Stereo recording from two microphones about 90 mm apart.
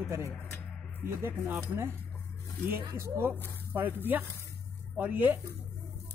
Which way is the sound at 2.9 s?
25° right (ahead or behind).